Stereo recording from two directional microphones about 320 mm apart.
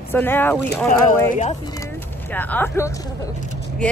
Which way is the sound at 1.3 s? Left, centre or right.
Left.